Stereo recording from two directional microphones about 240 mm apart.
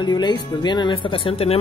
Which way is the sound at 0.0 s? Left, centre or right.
Centre.